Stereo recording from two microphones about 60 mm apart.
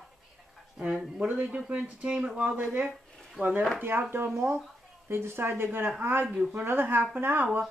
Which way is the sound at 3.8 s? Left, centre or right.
Right.